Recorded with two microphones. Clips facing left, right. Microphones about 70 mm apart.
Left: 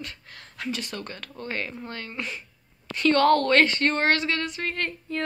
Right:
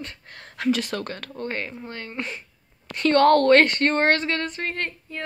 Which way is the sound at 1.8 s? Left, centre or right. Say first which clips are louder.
Right 2 dB; right.